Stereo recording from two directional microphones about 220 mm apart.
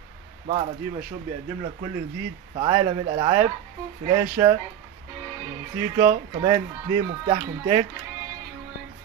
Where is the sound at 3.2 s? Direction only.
15° right (ahead or behind).